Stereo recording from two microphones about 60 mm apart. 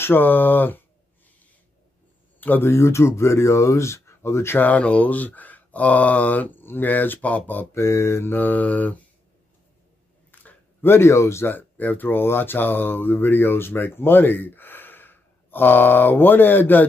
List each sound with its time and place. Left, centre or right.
0.0 s speech: left
2.4 s speech: left
4.6 s speech: left
7.7 s speech: left
8.4 s speech: left
10.4 s a sound: left
10.9 s speech: left
11.4 s speech: left